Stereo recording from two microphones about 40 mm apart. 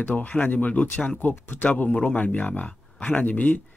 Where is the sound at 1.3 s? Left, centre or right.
Left.